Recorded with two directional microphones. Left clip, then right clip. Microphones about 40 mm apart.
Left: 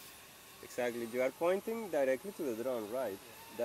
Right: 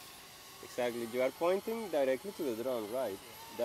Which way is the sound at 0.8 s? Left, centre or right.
Left.